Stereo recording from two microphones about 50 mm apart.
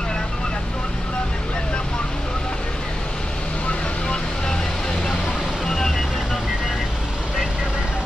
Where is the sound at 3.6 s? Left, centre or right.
Left.